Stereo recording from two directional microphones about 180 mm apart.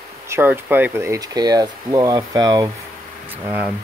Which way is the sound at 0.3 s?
10° right (ahead or behind).